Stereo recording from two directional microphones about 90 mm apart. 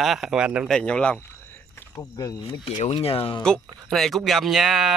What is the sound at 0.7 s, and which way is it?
Speech, 10° left (ahead or behind).